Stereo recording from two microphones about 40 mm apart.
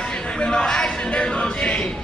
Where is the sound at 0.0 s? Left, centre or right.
Left.